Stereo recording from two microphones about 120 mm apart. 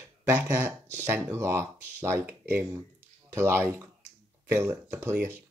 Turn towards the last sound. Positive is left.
turn(degrees=-20)  # may be behind; listen again after turning